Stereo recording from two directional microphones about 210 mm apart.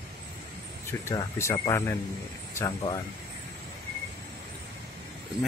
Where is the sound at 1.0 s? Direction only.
15° left (ahead or behind).